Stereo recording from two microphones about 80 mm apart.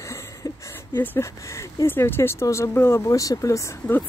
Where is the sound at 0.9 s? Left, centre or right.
Left.